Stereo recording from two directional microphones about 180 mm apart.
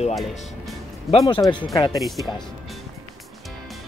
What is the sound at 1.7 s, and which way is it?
Speech, 20° left (ahead or behind).